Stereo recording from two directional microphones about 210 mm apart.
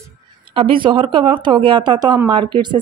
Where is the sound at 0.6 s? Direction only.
25° right (ahead or behind).